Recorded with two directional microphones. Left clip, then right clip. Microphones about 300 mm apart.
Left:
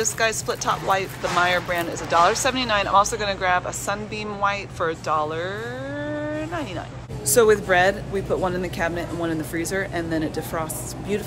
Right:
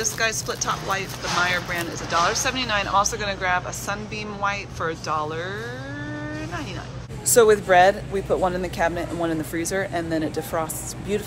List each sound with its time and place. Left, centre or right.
0.0 s speech: centre
6.2 s vehicle: centre
7.3 s speech: centre